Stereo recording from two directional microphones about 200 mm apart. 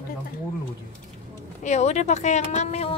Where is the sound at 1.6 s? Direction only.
35° left (ahead or behind).